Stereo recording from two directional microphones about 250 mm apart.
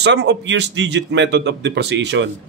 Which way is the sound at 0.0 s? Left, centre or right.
Right.